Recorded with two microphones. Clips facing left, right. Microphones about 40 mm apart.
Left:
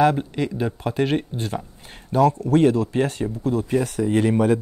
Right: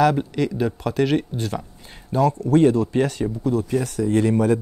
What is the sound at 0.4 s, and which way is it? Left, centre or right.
Speech, centre.